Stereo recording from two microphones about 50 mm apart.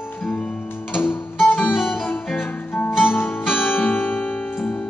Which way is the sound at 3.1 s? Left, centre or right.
Left.